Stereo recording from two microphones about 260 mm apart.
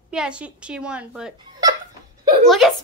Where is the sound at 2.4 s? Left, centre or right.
Centre.